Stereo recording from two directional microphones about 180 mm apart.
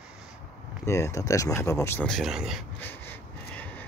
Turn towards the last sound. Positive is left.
turn(degrees=10)  # may be behind; listen again after turning